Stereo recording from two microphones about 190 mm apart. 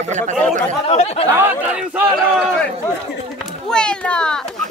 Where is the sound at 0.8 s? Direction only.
35° left (ahead or behind).